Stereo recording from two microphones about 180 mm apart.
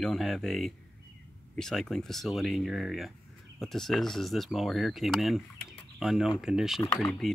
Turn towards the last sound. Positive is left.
turn(degrees=0)  # may be behind; listen again after turning